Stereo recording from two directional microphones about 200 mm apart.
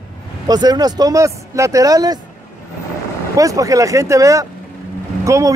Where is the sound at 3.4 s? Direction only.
15° right (ahead or behind).